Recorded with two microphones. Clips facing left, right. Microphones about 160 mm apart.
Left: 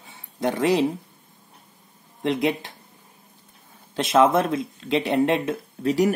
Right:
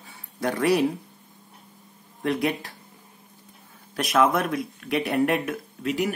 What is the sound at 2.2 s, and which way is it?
Speech, 20° left (ahead or behind).